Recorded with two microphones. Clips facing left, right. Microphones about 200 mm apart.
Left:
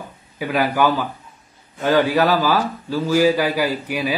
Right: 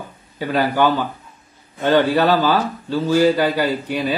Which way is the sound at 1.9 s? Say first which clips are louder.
Right 1 dB; 10° left (ahead or behind).